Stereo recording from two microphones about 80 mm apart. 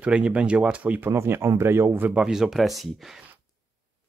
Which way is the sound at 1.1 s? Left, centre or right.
Right.